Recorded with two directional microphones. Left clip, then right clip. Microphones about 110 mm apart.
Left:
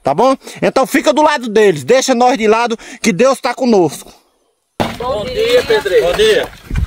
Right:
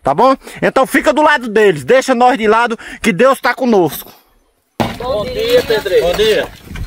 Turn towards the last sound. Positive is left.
turn(degrees=25)  # may be behind; listen again after turning